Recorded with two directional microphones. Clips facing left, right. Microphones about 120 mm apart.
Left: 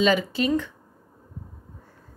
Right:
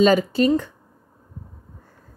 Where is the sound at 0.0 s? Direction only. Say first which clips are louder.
Right 5 dB; 45° right (ahead or behind).